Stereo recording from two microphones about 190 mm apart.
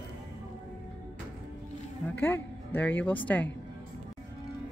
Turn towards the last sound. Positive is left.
turn(degrees=10)  # may be behind; listen again after turning